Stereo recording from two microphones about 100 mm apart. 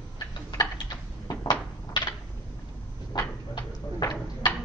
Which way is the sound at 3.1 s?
45° left (ahead or behind).